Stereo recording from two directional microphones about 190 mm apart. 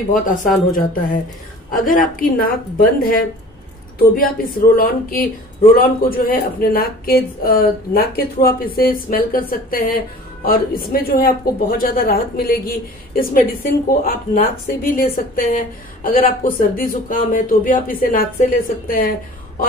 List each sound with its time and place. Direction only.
0.1 s speech: 45° left (ahead or behind)